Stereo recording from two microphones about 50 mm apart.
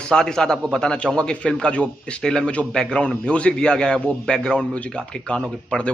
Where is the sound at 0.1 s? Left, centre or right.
Centre.